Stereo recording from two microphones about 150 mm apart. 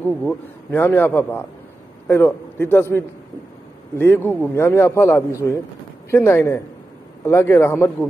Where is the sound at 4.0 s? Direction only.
15° left (ahead or behind).